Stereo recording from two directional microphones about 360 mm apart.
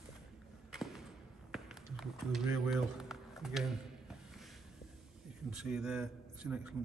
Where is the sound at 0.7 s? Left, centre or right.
Centre.